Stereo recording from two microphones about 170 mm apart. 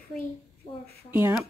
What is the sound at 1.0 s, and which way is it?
Speech, 10° right (ahead or behind).